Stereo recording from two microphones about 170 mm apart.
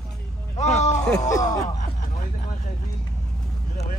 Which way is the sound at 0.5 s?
40° left (ahead or behind).